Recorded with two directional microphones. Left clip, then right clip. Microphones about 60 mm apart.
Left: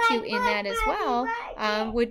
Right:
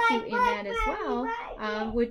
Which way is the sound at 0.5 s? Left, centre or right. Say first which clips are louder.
Left 3 dB; left.